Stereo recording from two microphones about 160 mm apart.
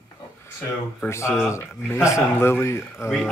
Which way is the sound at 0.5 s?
15° left (ahead or behind).